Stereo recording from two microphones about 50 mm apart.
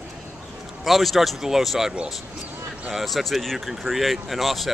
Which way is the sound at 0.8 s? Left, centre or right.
Centre.